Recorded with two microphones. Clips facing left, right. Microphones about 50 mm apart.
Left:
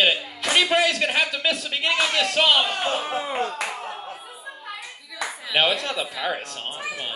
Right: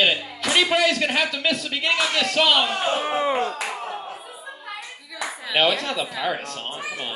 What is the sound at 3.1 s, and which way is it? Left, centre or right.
Speech, right.